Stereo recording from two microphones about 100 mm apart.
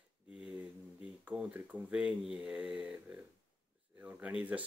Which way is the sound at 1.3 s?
15° right (ahead or behind).